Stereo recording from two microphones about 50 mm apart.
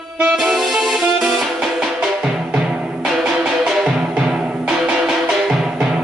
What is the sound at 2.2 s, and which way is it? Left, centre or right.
Drum, centre.